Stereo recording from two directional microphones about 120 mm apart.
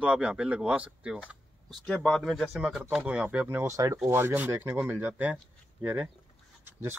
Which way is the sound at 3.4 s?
25° right (ahead or behind).